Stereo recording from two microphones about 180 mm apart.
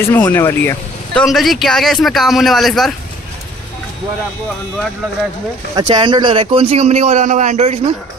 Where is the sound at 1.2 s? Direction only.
Centre (ahead or behind).